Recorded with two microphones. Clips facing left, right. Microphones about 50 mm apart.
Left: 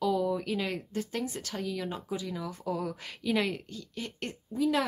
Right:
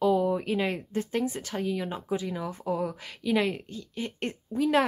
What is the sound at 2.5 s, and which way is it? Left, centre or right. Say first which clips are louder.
Speech: right 4 dB; right.